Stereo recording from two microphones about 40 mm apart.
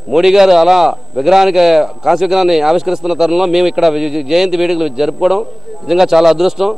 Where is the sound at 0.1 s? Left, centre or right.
Centre.